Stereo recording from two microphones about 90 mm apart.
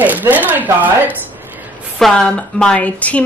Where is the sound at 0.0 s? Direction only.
20° right (ahead or behind).